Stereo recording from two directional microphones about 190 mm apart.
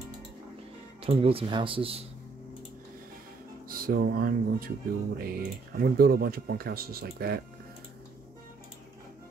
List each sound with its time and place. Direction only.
1.0 s speech: 30° right (ahead or behind)
3.6 s speech: 50° right (ahead or behind)